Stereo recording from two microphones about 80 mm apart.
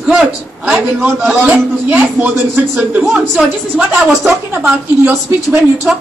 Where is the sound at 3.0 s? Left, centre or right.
Centre.